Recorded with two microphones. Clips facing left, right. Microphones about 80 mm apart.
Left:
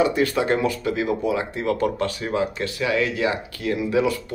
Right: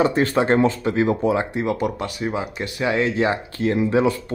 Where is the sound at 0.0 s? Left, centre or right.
Right; by 2.7 s centre.